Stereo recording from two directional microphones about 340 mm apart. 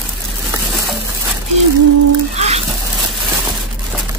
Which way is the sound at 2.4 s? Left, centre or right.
Centre.